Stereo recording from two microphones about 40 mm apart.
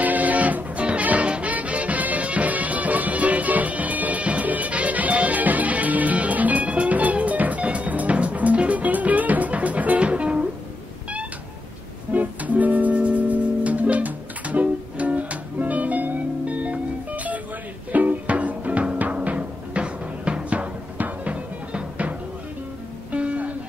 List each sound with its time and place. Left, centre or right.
0.0 s music: right
12.1 s music: right
12.9 s music: right
16.4 s music: right
23.1 s music: right